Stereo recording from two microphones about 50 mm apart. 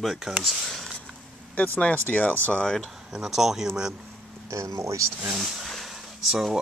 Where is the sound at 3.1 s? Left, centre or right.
Centre.